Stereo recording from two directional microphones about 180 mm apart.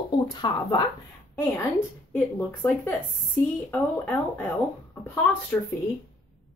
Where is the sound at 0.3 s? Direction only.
25° left (ahead or behind).